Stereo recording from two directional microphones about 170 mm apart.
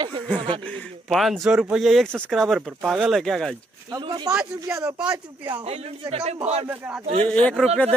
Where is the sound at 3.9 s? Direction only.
25° right (ahead or behind).